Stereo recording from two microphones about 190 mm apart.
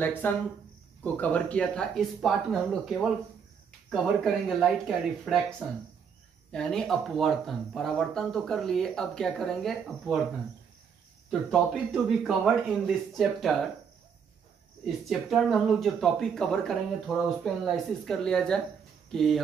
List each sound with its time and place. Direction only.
0.0 s speech: 10° left (ahead or behind)
6.5 s speech: centre (ahead or behind)
11.2 s speech: centre (ahead or behind)
15.0 s speech: centre (ahead or behind)